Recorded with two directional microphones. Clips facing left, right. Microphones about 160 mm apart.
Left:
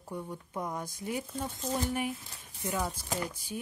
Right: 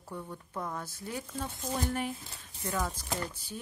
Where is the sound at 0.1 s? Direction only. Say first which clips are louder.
Left 2 dB; 15° left (ahead or behind).